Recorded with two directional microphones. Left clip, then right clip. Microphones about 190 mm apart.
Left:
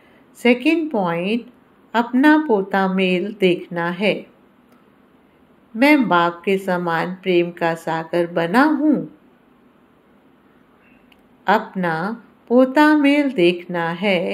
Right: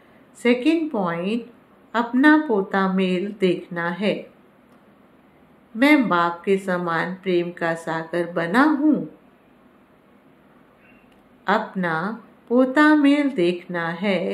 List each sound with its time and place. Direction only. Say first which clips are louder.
0.4 s speech: left 3 dB; 20° left (ahead or behind)
5.8 s speech: left 3 dB; 20° left (ahead or behind)
11.4 s speech: left 4 dB; 20° left (ahead or behind)